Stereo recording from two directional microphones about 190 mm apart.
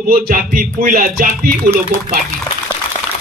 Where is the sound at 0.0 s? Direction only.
45° right (ahead or behind).